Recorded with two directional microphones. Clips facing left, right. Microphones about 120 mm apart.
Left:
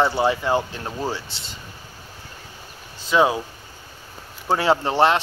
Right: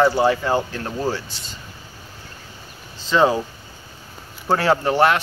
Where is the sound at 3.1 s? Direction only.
10° left (ahead or behind).